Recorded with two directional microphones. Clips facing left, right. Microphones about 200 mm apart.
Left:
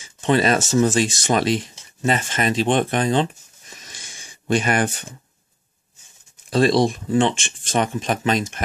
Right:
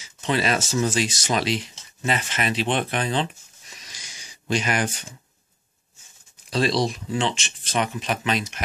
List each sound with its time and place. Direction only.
0.0 s speech: 50° left (ahead or behind)
3.7 s a sound: 50° left (ahead or behind)
6.5 s speech: 50° left (ahead or behind)